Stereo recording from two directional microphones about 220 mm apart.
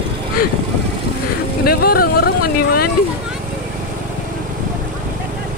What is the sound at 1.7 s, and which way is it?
Vehicle, 45° left (ahead or behind).